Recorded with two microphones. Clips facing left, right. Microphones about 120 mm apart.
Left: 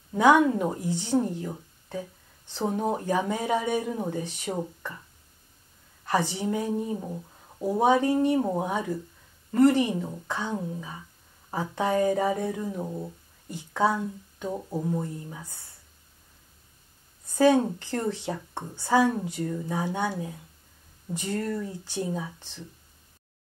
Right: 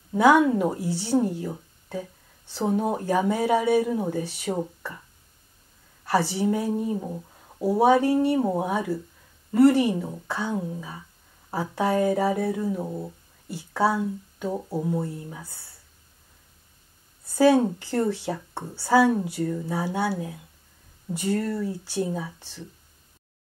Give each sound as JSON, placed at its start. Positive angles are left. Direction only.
{"t": 0.1, "sound": "speech", "side_deg": -10}
{"t": 6.0, "sound": "speech", "side_deg": -10}
{"t": 8.1, "sound": "speech", "side_deg": 20}
{"t": 8.4, "sound": "speech", "side_deg": -10}
{"t": 17.4, "sound": "speech", "side_deg": -10}